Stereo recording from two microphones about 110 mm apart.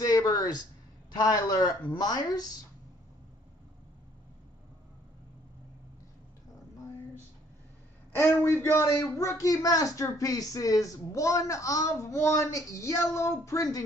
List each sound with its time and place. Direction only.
0.0 s a sound: 35° left (ahead or behind)
1.1 s speech: 35° left (ahead or behind)
8.3 s speech: 20° left (ahead or behind)